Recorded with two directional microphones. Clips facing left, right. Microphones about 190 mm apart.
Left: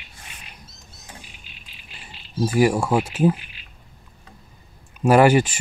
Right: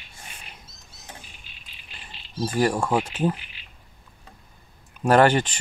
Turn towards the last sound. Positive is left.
turn(degrees=10)  # may be behind; listen again after turning